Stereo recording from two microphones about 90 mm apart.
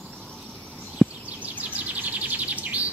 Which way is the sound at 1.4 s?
15° right (ahead or behind).